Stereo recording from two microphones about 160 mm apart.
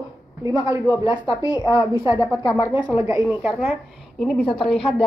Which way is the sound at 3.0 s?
20° right (ahead or behind).